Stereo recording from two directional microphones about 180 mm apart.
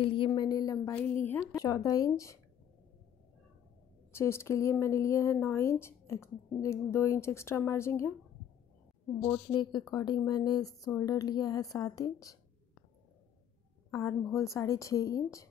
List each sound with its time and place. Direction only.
0.0 s speech: 30° left (ahead or behind)
4.1 s a woman's voice: 15° left (ahead or behind)
9.3 s speech: 25° left (ahead or behind)
13.8 s speech: 20° left (ahead or behind)